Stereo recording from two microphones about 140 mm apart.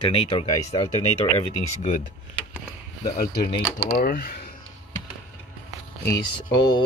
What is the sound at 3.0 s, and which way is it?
Speech, 90° left.